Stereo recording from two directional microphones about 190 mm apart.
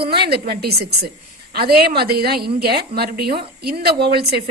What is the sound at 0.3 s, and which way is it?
A woman's voice, 55° right (ahead or behind).